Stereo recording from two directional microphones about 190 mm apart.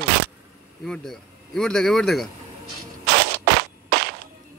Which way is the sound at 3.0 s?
55° right (ahead or behind).